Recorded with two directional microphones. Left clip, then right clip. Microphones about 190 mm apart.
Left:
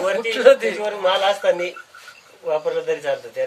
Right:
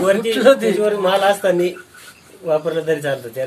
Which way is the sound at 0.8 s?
15° right (ahead or behind).